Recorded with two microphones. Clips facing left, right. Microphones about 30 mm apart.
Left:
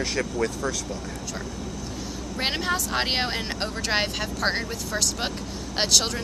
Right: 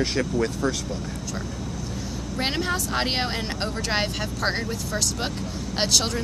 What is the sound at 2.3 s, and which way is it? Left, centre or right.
Speech, centre.